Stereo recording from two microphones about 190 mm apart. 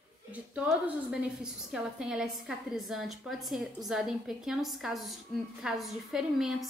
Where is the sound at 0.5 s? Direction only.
5° right (ahead or behind).